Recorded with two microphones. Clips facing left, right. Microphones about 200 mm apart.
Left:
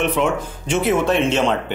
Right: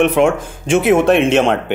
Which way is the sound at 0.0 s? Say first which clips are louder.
Right 7 dB; 50° right (ahead or behind).